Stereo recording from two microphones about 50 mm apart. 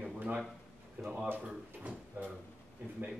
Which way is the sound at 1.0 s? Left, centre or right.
Right.